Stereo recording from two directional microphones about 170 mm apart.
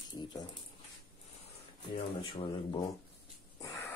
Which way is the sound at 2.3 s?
30° left (ahead or behind).